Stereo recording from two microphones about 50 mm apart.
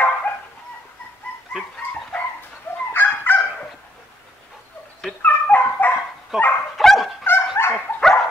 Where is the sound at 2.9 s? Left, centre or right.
Left.